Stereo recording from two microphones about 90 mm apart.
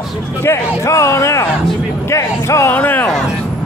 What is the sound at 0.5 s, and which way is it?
Speech, 35° left (ahead or behind).